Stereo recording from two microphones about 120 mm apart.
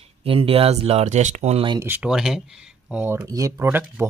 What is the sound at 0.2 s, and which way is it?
Speech, 50° right (ahead or behind).